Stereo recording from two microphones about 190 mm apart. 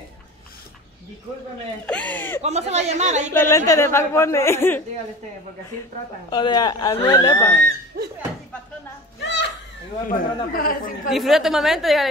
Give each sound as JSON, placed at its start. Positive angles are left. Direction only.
{"t": 1.9, "sound": "speech", "side_deg": 5}
{"t": 2.4, "sound": "speech", "side_deg": -35}
{"t": 3.3, "sound": "speech", "side_deg": 15}
{"t": 6.3, "sound": "speech", "side_deg": 25}
{"t": 8.0, "sound": "speech", "side_deg": -50}
{"t": 9.2, "sound": "children playing", "side_deg": 70}
{"t": 10.0, "sound": "speech", "side_deg": 45}
{"t": 11.1, "sound": "a woman's voice", "side_deg": 0}